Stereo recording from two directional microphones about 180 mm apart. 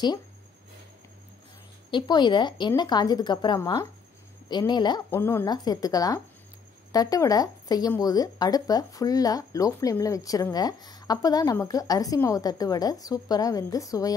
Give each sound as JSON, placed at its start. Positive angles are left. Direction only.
{"t": 1.9, "sound": "speech", "side_deg": 25}
{"t": 5.1, "sound": "speech", "side_deg": 10}